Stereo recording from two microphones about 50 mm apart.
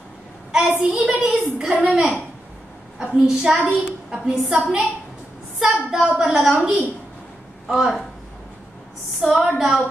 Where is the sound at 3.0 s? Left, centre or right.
Centre.